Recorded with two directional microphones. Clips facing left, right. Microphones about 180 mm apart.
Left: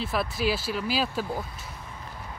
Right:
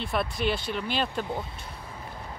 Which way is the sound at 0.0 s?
Centre (ahead or behind).